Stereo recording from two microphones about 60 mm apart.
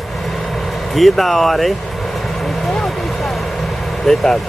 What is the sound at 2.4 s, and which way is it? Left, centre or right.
Vehicle, centre.